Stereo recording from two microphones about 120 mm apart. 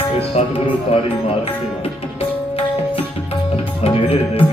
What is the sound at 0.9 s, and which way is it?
Speech, 55° left (ahead or behind).